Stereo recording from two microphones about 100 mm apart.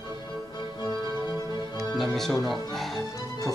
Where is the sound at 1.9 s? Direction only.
Centre (ahead or behind).